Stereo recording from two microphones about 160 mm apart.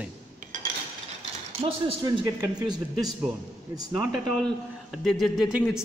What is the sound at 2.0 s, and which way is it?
Speech, 20° right (ahead or behind).